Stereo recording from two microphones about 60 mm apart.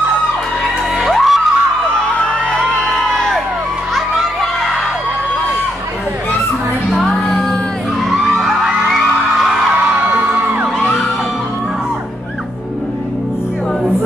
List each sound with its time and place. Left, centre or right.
1.0 s music: centre
2.2 s music: centre
6.9 s music: centre
8.2 s music: centre
10.1 s music: right